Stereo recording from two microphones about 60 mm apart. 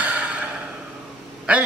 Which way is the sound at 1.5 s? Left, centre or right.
Right.